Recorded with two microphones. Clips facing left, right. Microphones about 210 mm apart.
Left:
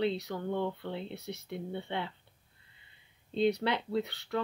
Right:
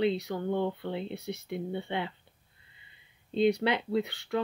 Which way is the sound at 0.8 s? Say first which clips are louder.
Right 4 dB; 10° right (ahead or behind).